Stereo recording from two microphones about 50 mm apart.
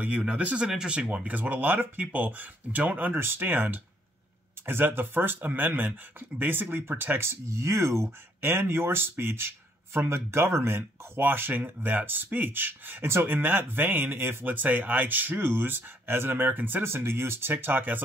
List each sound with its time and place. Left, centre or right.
0.6 s speech: centre
1.1 s speech: right
7.2 s speech: right
8.4 s speech: right
10.8 s speech: right
14.4 s speech: right
16.8 s speech: right